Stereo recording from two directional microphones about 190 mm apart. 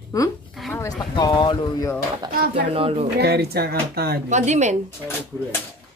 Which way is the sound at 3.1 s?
55° right (ahead or behind).